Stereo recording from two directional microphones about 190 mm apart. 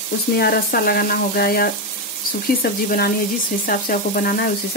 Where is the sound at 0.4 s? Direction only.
55° left (ahead or behind).